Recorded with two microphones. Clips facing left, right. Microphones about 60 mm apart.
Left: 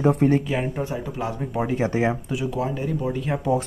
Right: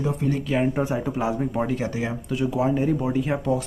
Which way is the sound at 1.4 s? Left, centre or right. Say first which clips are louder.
Right 1 dB; centre.